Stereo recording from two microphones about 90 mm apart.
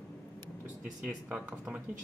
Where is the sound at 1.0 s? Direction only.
15° right (ahead or behind).